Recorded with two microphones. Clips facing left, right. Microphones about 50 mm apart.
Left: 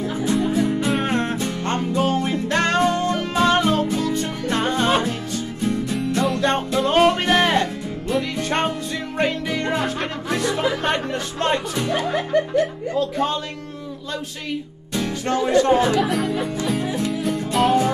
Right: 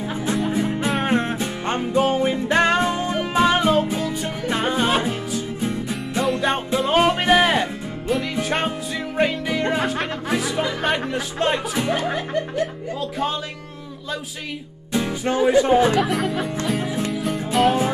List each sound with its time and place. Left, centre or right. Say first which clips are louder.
0.5 s music: left 2 dB; right; by 11.8 s centre
12.9 s music: left 5 dB; centre
14.9 s speech: right 1 dB; centre
16.0 s speech: even; centre
17.1 s music: even; centre